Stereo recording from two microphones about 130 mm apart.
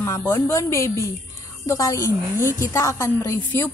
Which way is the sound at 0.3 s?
20° left (ahead or behind).